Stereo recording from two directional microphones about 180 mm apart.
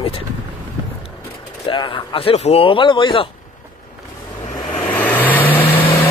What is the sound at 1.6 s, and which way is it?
Speech, 25° left (ahead or behind).